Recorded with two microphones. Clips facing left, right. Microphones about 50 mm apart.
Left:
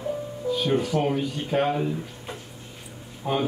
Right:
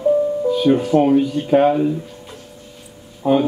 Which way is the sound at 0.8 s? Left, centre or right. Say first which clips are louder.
Right 9 dB; right.